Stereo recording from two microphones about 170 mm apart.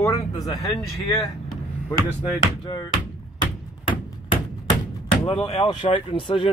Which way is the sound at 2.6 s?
25° left (ahead or behind).